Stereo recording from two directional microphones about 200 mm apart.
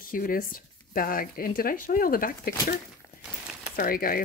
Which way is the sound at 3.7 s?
45° left (ahead or behind).